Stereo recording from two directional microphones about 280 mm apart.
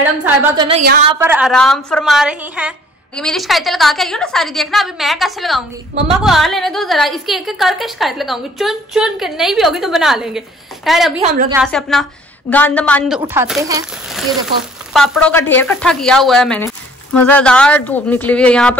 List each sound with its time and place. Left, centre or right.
0.2 s a woman's voice: centre
11.1 s a woman's voice: right
11.5 s a woman's voice: centre
13.3 s a woman's voice: centre
14.9 s a woman's voice: centre